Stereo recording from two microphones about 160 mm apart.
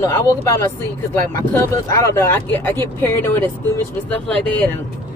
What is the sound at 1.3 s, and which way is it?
Speech, 15° left (ahead or behind).